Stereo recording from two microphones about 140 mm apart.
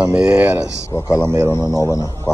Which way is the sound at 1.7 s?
20° left (ahead or behind).